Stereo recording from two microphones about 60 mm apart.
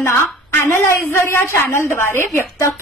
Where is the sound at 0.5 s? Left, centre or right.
Left.